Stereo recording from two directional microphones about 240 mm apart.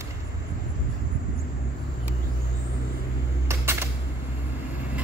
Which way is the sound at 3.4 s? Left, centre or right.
Centre.